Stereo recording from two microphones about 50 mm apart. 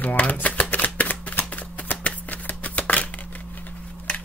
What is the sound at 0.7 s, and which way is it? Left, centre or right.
Shuffling cards, left.